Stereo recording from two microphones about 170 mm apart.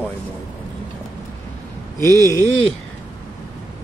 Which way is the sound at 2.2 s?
15° left (ahead or behind).